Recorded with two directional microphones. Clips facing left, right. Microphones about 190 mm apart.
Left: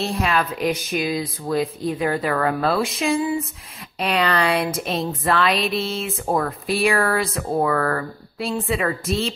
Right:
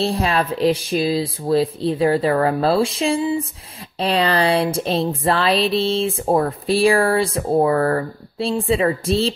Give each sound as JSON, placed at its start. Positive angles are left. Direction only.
{"t": 0.0, "sound": "speech", "side_deg": -30}